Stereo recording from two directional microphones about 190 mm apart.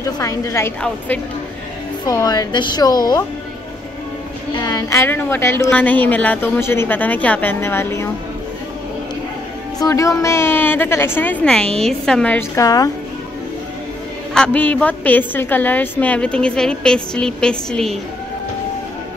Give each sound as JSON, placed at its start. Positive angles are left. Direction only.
{"t": 0.0, "sound": "a woman's voice", "side_deg": 15}
{"t": 2.0, "sound": "speech", "side_deg": 20}
{"t": 4.6, "sound": "a woman's voice", "side_deg": 20}
{"t": 9.8, "sound": "a woman's voice", "side_deg": 15}
{"t": 14.3, "sound": "a woman's voice", "side_deg": 5}